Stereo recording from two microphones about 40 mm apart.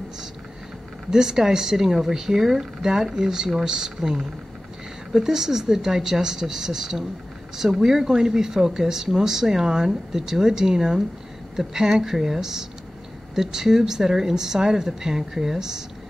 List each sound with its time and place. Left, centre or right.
1.1 s speech: centre